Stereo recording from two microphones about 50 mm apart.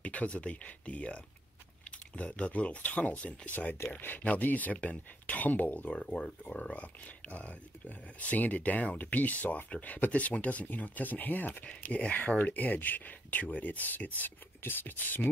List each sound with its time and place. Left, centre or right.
0.0 s speech: left
6.4 s speech: centre
6.8 s speech: left